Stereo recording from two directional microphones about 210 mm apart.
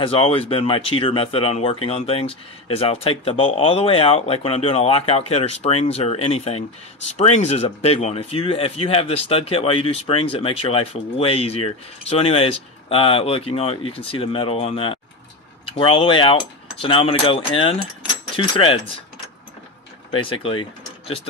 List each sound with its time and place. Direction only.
0.0 s speech: 25° left (ahead or behind)
20.1 s speech: 25° left (ahead or behind)